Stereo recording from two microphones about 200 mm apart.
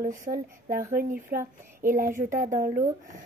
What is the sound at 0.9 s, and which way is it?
A woman's voice, 45° right (ahead or behind).